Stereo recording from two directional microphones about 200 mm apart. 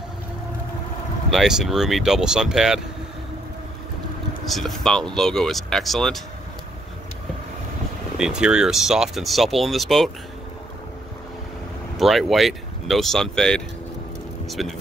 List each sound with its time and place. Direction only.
1.3 s speech: centre (ahead or behind)
4.5 s speech: centre (ahead or behind)
8.2 s speech: 5° right (ahead or behind)
12.0 s speech: centre (ahead or behind)